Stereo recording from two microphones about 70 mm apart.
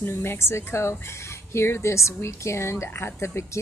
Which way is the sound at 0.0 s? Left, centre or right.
Left.